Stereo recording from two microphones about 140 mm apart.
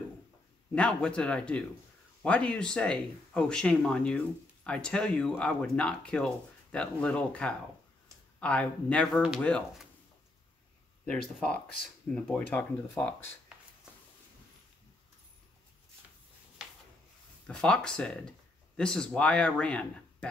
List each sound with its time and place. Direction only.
0.7 s speech: 10° left (ahead or behind)
11.3 s speech: 5° left (ahead or behind)
17.5 s speech: 5° left (ahead or behind)